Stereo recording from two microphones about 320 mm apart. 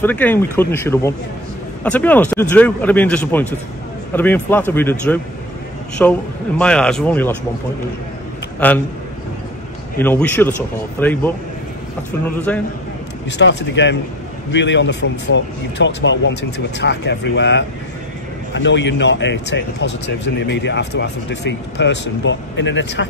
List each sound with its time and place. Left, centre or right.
0.0 s speech: centre
8.5 s speech: centre
9.9 s speech: centre
12.4 s speech: centre
13.4 s speech: left